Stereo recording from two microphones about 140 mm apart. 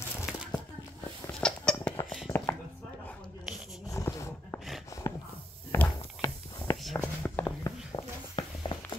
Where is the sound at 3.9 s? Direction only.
25° left (ahead or behind).